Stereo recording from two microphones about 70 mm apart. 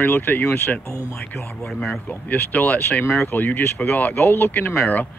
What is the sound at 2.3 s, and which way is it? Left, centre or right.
Speech, left.